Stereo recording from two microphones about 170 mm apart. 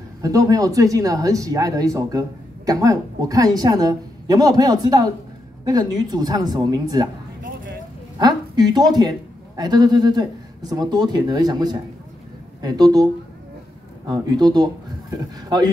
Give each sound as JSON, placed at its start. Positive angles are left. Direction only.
{"t": 0.2, "sound": "speech", "side_deg": -20}
{"t": 8.2, "sound": "speech", "side_deg": -25}